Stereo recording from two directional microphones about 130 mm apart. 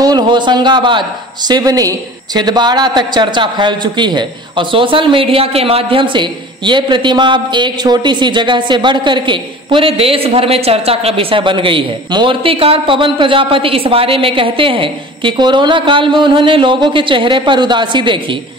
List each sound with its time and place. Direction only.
0.0 s a man's voice: 35° right (ahead or behind)